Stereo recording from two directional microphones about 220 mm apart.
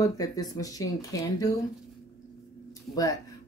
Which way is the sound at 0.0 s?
15° left (ahead or behind).